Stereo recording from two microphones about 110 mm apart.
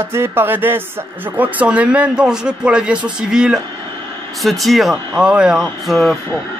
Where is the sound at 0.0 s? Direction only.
20° right (ahead or behind).